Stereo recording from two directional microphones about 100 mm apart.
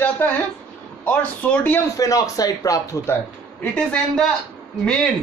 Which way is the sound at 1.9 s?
35° left (ahead or behind).